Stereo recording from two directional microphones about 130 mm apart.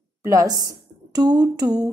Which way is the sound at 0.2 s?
25° right (ahead or behind).